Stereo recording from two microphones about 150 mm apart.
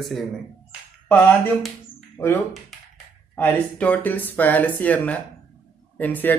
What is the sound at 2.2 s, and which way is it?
Speech, 25° left (ahead or behind).